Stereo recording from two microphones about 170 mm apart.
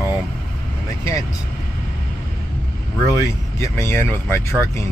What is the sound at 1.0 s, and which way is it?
Speech, 20° left (ahead or behind).